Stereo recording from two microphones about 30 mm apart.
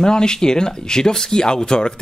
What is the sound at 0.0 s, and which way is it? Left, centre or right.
Speech, left.